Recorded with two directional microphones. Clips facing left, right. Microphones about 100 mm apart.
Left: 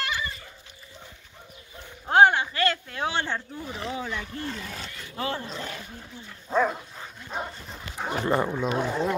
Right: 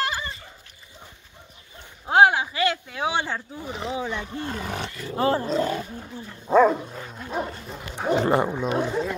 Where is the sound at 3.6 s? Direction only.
20° right (ahead or behind).